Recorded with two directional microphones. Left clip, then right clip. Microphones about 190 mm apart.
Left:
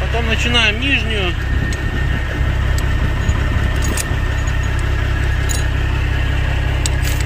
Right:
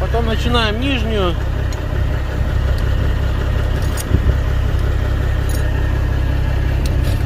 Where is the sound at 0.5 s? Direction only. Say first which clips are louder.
Left 3 dB; 15° right (ahead or behind).